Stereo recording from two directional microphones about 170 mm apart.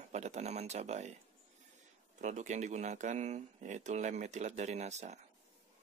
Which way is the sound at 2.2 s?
45° right (ahead or behind).